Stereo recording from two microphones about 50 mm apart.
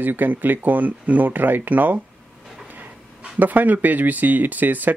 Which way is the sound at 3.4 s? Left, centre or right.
Right.